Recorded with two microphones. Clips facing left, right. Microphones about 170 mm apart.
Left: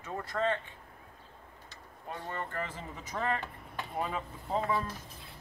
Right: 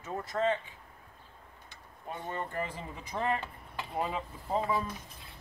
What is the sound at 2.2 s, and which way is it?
Speech, 15° right (ahead or behind).